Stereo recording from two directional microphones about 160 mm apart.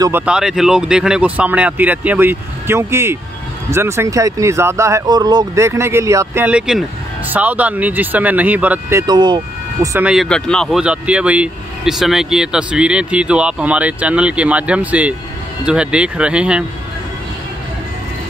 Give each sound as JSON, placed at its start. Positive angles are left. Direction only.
{"t": 0.2, "sound": "speech", "side_deg": -5}
{"t": 9.0, "sound": "speech", "side_deg": -30}
{"t": 9.9, "sound": "speech", "side_deg": -5}
{"t": 10.2, "sound": "speech", "side_deg": 5}